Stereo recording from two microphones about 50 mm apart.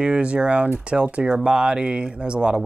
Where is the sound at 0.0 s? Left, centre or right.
Right.